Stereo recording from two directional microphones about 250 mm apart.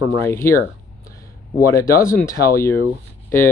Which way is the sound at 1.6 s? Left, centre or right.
Centre.